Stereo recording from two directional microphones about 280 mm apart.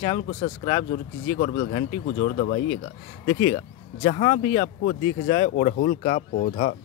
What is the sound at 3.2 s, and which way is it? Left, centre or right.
Speech, centre.